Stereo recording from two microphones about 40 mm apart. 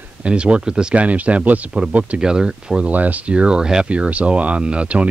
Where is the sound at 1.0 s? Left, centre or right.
Right.